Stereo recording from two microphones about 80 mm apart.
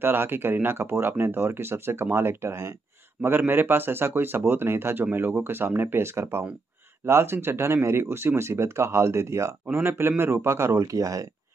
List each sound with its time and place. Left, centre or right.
0.0 s speech: right
9.8 s speech: right